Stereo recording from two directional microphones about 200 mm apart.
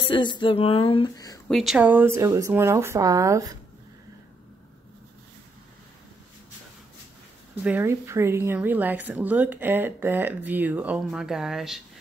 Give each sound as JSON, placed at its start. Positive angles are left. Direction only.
{"t": 0.0, "sound": "speech", "side_deg": 25}
{"t": 1.5, "sound": "a woman's voice", "side_deg": 0}
{"t": 7.6, "sound": "a woman's voice", "side_deg": -10}